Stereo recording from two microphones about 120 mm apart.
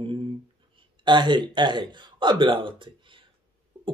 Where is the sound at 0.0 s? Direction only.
45° right (ahead or behind).